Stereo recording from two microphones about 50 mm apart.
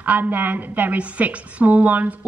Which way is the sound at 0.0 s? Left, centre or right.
Right.